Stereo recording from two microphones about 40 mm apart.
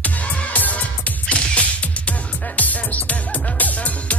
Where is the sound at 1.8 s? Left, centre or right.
Left.